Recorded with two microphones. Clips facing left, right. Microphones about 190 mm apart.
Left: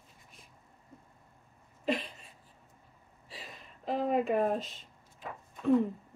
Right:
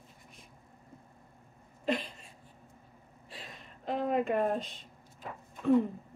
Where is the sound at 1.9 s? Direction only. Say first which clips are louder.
Even; centre (ahead or behind).